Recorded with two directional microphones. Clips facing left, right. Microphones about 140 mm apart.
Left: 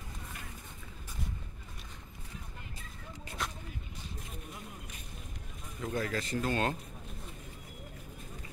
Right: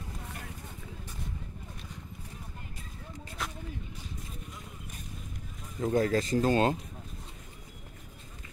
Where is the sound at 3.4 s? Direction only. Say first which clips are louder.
Even; 5° right (ahead or behind).